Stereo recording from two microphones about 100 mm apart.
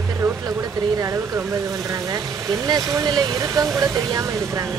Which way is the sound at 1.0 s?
30° right (ahead or behind).